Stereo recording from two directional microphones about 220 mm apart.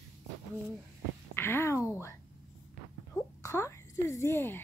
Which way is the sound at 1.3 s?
10° left (ahead or behind).